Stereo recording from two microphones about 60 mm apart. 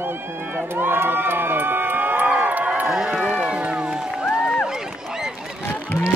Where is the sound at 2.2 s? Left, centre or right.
Right.